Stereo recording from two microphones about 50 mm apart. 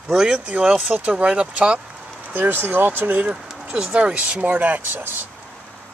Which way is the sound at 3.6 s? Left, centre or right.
Centre.